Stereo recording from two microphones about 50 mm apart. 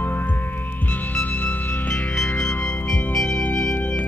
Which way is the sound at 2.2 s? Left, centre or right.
Centre.